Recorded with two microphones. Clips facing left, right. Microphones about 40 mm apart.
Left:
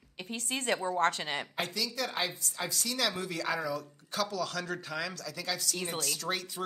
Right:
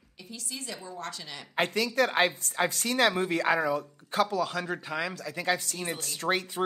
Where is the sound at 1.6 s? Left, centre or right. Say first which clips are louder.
Right 12 dB; right.